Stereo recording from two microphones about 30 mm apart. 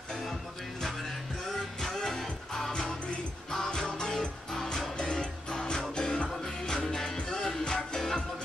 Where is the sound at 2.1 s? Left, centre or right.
Centre; by 6.2 s left.